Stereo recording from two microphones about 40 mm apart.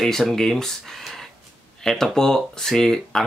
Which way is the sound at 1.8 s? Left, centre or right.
Centre.